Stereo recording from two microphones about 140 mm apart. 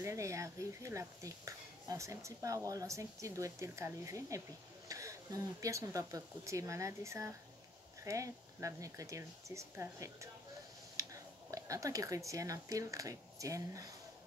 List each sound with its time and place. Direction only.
0.0 s speech: 20° right (ahead or behind)
11.0 s a sound: 25° right (ahead or behind)
11.5 s speech: 25° right (ahead or behind)